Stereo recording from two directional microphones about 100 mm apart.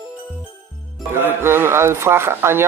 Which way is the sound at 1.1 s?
25° right (ahead or behind).